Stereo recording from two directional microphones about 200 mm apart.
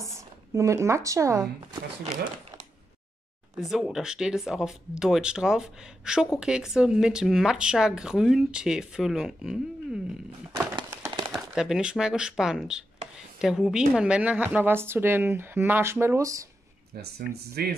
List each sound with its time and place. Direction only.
0.0 s speech: 15° right (ahead or behind)
3.5 s speech: centre (ahead or behind)
10.8 s a sound: 20° right (ahead or behind)
11.3 s a woman's voice: 5° right (ahead or behind)
16.9 s speech: 55° right (ahead or behind)